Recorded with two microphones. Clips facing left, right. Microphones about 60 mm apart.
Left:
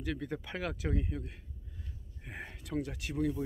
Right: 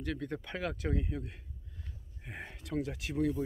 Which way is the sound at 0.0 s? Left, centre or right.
Centre.